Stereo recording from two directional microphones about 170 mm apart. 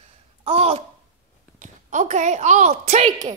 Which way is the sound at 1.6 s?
45° right (ahead or behind).